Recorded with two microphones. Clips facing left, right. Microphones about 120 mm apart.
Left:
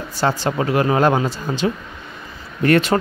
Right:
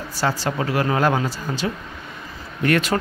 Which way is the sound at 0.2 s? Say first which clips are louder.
Left 3 dB; 20° left (ahead or behind).